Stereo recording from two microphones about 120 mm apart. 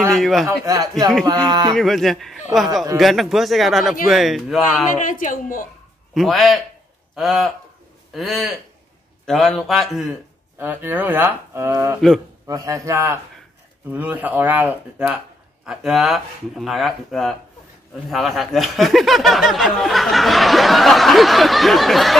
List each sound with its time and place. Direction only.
0.1 s speech: centre (ahead or behind)
0.5 s a man's voice: 30° right (ahead or behind)
1.8 s speech: centre (ahead or behind)
4.9 s a woman's voice: 90° left
6.1 s speech: centre (ahead or behind)
10.6 s a man's voice: 15° right (ahead or behind); by 22.1 s centre (ahead or behind)